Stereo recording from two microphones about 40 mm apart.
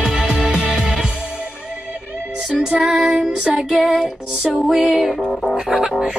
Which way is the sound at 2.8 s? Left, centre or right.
Centre.